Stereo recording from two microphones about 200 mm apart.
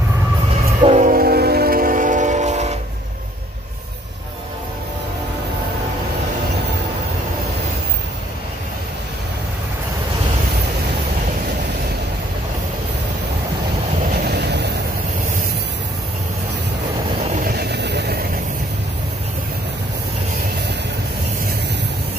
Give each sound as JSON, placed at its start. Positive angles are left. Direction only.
{"t": 0.8, "sound": "train", "side_deg": -35}
{"t": 14.2, "sound": "a sound", "side_deg": -60}
{"t": 17.3, "sound": "vehicle", "side_deg": -45}